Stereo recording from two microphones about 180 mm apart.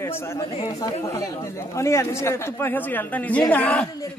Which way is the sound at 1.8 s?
15° left (ahead or behind).